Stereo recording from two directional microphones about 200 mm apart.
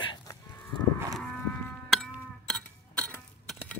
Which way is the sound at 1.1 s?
5° left (ahead or behind).